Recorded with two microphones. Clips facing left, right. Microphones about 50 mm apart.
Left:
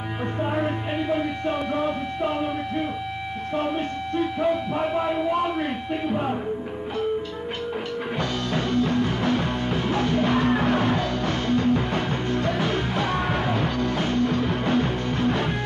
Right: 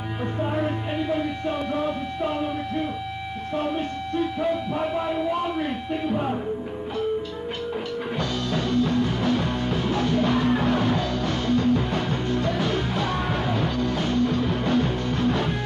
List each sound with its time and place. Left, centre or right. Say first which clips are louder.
0.4 s music: left 1 dB; left
1.4 s a sound: left 1 dB; left
3.5 s music: even; left
8.2 s music: left 1 dB; left